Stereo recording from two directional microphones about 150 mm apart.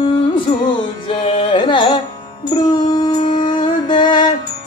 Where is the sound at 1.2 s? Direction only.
35° left (ahead or behind).